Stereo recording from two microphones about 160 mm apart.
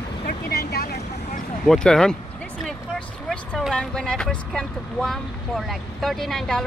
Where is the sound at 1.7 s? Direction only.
5° left (ahead or behind).